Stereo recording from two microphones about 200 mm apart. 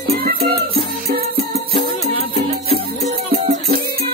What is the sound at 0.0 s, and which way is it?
Music, 50° right (ahead or behind).